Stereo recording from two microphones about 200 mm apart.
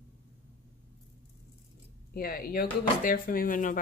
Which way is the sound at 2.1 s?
45° left (ahead or behind).